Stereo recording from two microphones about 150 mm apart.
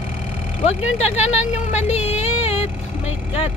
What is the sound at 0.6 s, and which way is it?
Speech, 45° left (ahead or behind).